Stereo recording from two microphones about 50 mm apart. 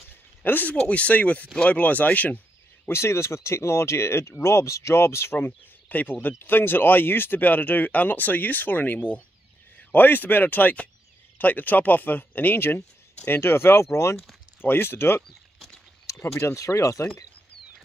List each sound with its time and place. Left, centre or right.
0.1 s a sound: left
0.8 s speech: left
2.9 s speech: left
5.9 s speech: left
16.5 s speech: left